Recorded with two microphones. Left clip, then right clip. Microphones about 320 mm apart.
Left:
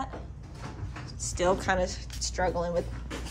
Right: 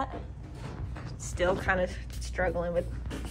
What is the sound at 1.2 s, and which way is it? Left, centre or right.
A woman's voice, centre.